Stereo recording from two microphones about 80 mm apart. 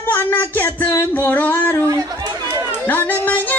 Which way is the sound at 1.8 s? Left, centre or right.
Right.